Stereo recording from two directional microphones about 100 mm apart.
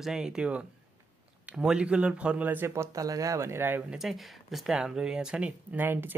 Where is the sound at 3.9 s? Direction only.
Centre (ahead or behind).